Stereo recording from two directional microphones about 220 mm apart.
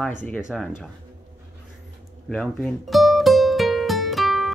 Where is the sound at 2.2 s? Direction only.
Centre (ahead or behind).